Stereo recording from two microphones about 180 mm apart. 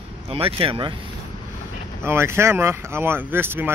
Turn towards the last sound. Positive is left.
turn(degrees=-10)  # may be behind; listen again after turning